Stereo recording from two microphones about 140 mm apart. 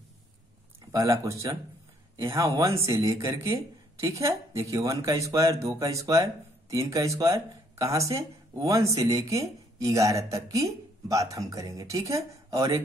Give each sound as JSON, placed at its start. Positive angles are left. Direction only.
{"t": 0.9, "sound": "speech", "side_deg": -20}